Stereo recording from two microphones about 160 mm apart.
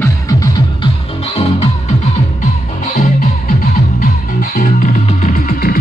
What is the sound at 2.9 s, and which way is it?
Music, 50° left (ahead or behind).